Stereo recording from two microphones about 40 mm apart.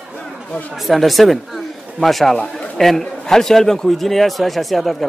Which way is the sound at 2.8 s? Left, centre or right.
Centre.